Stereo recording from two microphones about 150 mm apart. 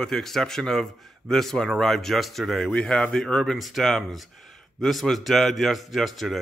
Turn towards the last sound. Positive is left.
turn(degrees=0)  # may be behind; listen again after turning